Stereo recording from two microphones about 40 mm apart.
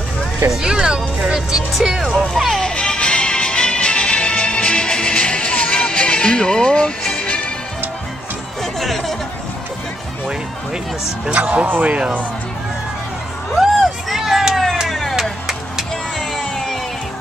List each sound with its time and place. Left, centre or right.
0.5 s speech: centre
2.1 s speech: centre
2.7 s music: left
8.7 s music: centre
11.3 s speech: right
13.6 s a sound: centre
14.5 s vehicle: centre
14.9 s music: centre
16.2 s music: centre